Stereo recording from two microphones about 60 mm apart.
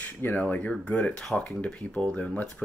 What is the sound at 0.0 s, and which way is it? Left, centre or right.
Speech, left.